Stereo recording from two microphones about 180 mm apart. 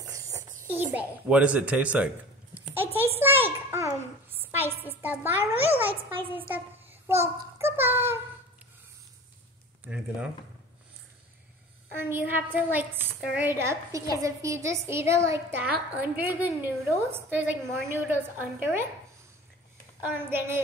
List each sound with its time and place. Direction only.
0.1 s a sound: 20° right (ahead or behind)
0.7 s a woman's voice: 10° right (ahead or behind)
3.0 s a sound: 10° right (ahead or behind)
6.3 s child singing: 10° right (ahead or behind)
9.8 s speech: 5° right (ahead or behind)
12.0 s a woman's voice: 10° right (ahead or behind)
20.0 s a woman's voice: 10° right (ahead or behind)